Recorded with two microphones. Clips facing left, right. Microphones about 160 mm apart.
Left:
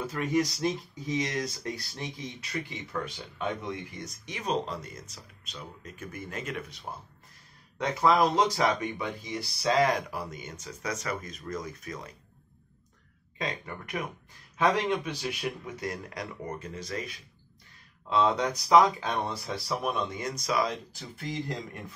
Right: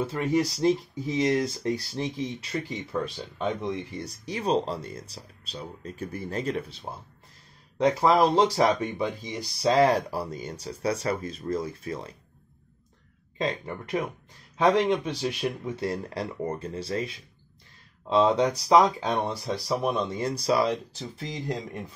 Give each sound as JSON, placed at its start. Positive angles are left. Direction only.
{"t": 0.0, "sound": "speech", "side_deg": -30}
{"t": 2.9, "sound": "speech", "side_deg": -15}
{"t": 4.0, "sound": "speech", "side_deg": -30}
{"t": 8.2, "sound": "speech", "side_deg": -30}
{"t": 9.2, "sound": "speech", "side_deg": -20}
{"t": 9.7, "sound": "speech", "side_deg": -30}
{"t": 13.4, "sound": "speech", "side_deg": -30}
{"t": 21.2, "sound": "speech", "side_deg": -20}